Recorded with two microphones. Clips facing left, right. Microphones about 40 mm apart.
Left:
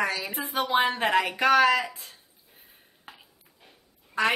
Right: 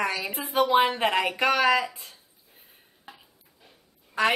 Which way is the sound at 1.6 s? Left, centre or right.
Centre.